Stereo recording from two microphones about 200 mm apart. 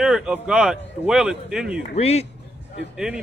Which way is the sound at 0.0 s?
5° right (ahead or behind).